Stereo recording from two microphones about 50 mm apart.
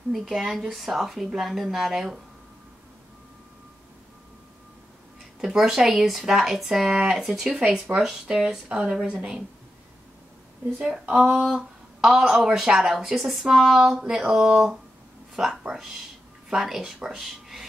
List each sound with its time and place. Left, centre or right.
0.1 s a woman's voice: centre
5.4 s speech: centre
10.8 s speech: centre
11.5 s a sound: centre
12.4 s a woman's voice: centre